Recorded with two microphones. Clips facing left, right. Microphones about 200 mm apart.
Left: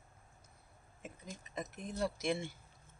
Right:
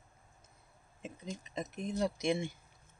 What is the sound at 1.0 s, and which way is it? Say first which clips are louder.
Speech: right 6 dB; 20° right (ahead or behind).